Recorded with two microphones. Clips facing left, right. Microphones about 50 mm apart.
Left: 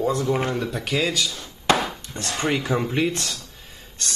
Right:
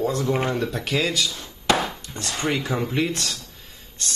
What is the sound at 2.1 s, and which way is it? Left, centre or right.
Speech, left.